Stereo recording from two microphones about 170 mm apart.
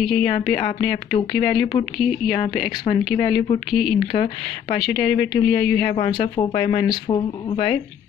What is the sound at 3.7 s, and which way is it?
Speech, centre (ahead or behind).